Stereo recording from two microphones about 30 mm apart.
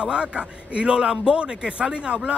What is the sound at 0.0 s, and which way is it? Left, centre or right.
Speech, right.